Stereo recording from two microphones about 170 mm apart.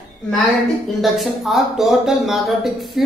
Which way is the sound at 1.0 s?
Centre (ahead or behind).